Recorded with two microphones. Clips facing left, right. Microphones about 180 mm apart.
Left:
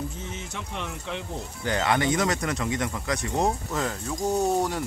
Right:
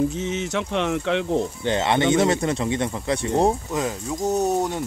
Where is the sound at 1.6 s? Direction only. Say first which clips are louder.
Left 1 dB; 25° right (ahead or behind).